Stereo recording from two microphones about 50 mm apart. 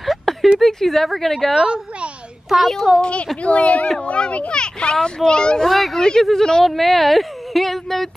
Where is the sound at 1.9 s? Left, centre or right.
Right.